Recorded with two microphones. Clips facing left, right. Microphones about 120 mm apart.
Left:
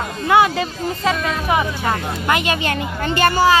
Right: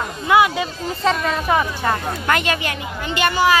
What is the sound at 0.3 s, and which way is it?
Speech, 30° left (ahead or behind).